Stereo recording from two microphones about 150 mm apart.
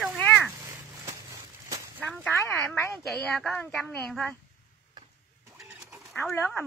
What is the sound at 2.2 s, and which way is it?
Speech, 15° left (ahead or behind).